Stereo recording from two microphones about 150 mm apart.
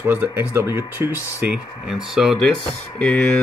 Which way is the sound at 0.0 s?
15° right (ahead or behind).